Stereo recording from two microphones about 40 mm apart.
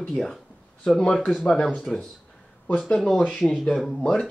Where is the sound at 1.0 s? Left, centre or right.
Left.